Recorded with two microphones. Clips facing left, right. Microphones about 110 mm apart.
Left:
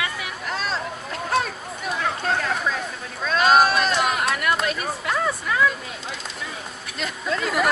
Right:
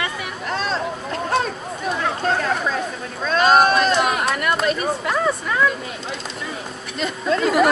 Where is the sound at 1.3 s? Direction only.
Centre (ahead or behind).